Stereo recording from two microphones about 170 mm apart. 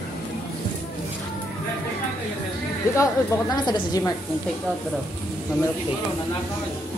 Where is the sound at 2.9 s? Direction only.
20° left (ahead or behind).